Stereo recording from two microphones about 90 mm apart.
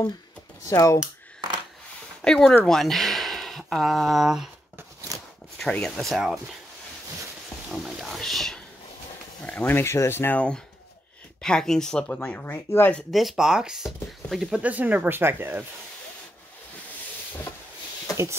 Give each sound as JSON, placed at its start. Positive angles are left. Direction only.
{"t": 0.7, "sound": "speech", "side_deg": 35}
{"t": 2.2, "sound": "speech", "side_deg": 5}
{"t": 5.6, "sound": "speech", "side_deg": 5}
{"t": 7.7, "sound": "a sound", "side_deg": 0}
{"t": 9.5, "sound": "speech", "side_deg": 20}
{"t": 11.4, "sound": "speech", "side_deg": 5}
{"t": 13.1, "sound": "speech", "side_deg": 0}
{"t": 14.6, "sound": "speech", "side_deg": -15}